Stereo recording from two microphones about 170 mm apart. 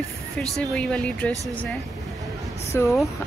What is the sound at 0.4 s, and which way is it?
Speech, 5° left (ahead or behind).